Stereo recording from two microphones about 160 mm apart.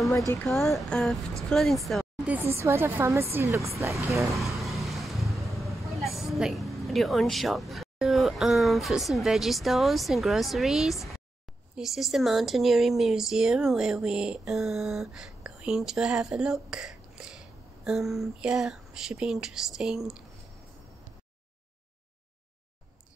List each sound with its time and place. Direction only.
0.5 s speech: centre (ahead or behind)
2.3 s a woman's voice: 15° right (ahead or behind)
4.2 s speech: centre (ahead or behind)